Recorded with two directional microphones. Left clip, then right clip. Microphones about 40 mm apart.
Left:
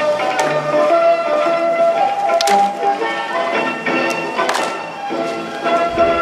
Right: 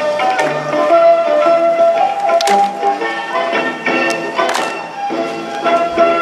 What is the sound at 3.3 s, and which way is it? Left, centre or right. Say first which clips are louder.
Music: right 4 dB; right.